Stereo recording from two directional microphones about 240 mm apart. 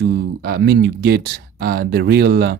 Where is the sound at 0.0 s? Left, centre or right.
Right.